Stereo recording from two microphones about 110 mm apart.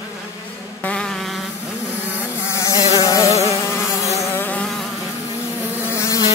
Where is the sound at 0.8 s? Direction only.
10° left (ahead or behind).